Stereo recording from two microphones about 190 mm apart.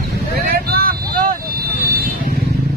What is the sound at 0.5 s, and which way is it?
Vehicle, 50° right (ahead or behind).